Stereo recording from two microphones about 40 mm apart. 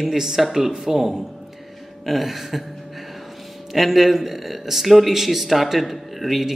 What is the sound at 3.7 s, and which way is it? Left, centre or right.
Speech, centre.